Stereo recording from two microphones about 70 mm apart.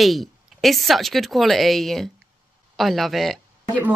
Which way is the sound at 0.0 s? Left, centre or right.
Centre.